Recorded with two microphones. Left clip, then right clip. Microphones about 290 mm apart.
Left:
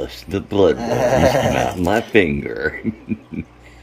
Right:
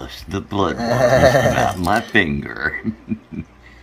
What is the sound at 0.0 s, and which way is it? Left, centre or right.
Speech, centre.